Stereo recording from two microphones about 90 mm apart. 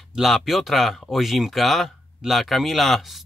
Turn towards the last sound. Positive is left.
turn(degrees=0)  # may be behind; listen again after turning